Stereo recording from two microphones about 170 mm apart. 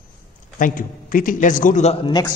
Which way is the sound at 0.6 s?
55° left (ahead or behind).